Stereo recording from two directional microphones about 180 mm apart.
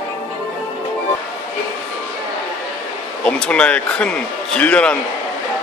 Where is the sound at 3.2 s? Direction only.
5° left (ahead or behind).